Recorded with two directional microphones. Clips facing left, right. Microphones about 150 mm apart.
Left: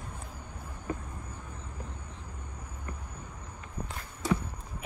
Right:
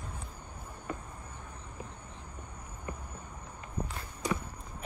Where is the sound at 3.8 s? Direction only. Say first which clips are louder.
Right 2 dB; 30° right (ahead or behind).